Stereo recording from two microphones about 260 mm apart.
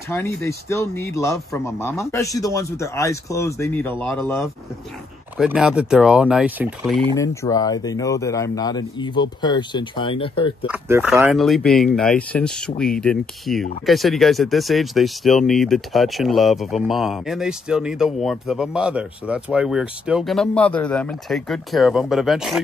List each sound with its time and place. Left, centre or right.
0.4 s speech: centre
7.2 s speech: centre
10.7 s speech: centre